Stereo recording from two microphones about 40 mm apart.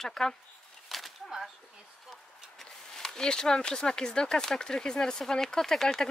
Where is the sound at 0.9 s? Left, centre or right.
Centre.